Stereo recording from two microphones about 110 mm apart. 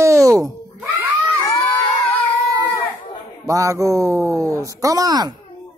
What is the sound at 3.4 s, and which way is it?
Speech, 30° right (ahead or behind).